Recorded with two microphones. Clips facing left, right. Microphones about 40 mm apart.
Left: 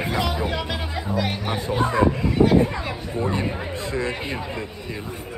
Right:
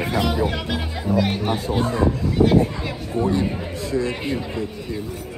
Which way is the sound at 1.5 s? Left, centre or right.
Left.